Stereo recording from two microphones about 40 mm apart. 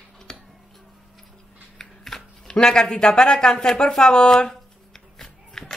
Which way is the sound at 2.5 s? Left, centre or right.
Centre.